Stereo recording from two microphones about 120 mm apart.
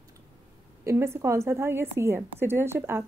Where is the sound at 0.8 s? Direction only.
25° right (ahead or behind).